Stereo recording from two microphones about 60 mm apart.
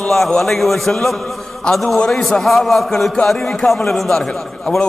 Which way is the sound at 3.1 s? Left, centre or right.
Centre.